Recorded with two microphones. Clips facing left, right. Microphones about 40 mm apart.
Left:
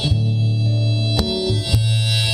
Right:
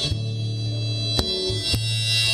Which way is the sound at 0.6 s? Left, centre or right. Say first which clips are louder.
Left 7 dB; centre.